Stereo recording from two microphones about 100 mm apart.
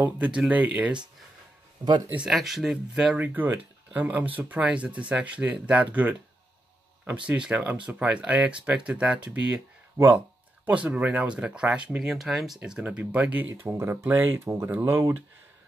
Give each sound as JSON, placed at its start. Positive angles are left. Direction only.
{"t": 0.0, "sound": "speech", "side_deg": -10}
{"t": 1.8, "sound": "speech", "side_deg": -45}
{"t": 2.2, "sound": "speech", "side_deg": 0}
{"t": 7.2, "sound": "speech", "side_deg": -10}
{"t": 12.5, "sound": "speech", "side_deg": -10}